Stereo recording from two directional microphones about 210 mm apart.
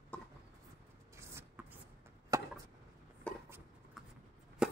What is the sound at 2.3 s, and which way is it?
Chop, 15° right (ahead or behind).